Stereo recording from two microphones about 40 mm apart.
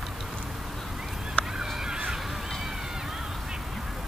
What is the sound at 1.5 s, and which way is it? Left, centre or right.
Fowl, centre.